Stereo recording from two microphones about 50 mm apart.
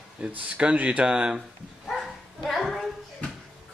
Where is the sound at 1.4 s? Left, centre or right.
Centre.